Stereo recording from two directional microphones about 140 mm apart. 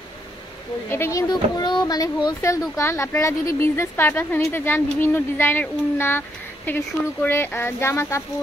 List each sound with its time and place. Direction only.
0.8 s a woman's voice: 15° left (ahead or behind)
1.3 s a woman's voice: 30° left (ahead or behind)